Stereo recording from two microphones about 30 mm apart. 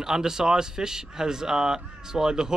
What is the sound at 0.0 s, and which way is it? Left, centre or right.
Speech, centre.